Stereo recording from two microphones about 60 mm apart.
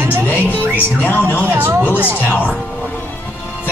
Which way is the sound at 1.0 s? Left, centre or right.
Left.